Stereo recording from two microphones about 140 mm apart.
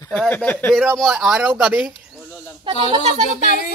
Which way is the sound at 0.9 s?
Centre (ahead or behind).